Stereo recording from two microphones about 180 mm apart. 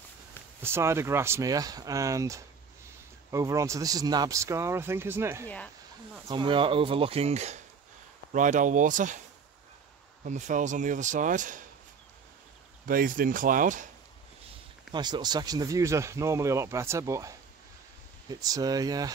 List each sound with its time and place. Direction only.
0.6 s speech: 15° right (ahead or behind)
6.2 s speech: 25° right (ahead or behind); by 9.2 s 45° right (ahead or behind)
10.2 s speech: 45° right (ahead or behind)
12.8 s speech: 50° right (ahead or behind)
14.9 s speech: 25° right (ahead or behind)